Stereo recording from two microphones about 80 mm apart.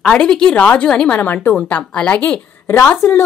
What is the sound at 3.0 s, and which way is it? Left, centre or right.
Speech, left.